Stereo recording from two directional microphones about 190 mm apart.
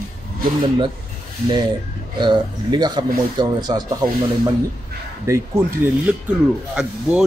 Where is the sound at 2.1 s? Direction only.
25° right (ahead or behind).